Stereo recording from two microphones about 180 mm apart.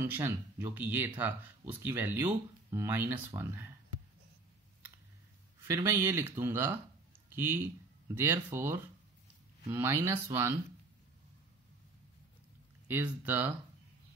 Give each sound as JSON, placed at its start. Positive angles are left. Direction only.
{"t": 0.0, "sound": "speech", "side_deg": -10}
{"t": 5.7, "sound": "speech", "side_deg": -15}
{"t": 12.8, "sound": "speech", "side_deg": -10}